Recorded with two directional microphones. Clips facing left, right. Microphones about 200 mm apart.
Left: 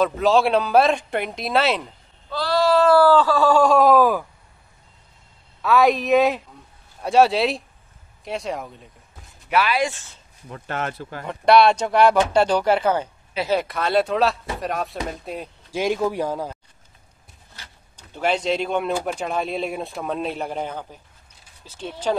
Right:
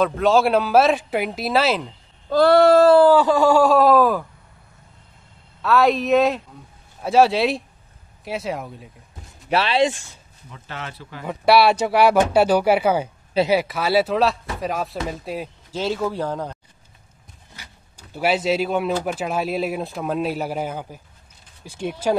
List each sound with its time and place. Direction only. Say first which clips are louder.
0.0 s speech: right 1 dB; centre (ahead or behind)
2.2 s a sound: right 7 dB; 50° right (ahead or behind)
2.9 s speech: right 2 dB; 20° right (ahead or behind); by 4.3 s centre (ahead or behind)
5.6 s speech: even; centre (ahead or behind)
9.5 s speech: right 2 dB; 30° right (ahead or behind)
10.5 s speech: left 6 dB; 50° left (ahead or behind)
11.2 s speech: left 1 dB; 5° right (ahead or behind)
15.7 s speech: left 2 dB; 15° left (ahead or behind)
17.6 s speech: right 1 dB; 10° right (ahead or behind)